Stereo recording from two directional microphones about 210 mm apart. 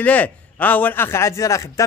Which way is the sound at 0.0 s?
5° left (ahead or behind).